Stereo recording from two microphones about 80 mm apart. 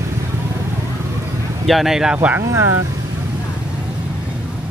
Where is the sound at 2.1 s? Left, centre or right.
Centre.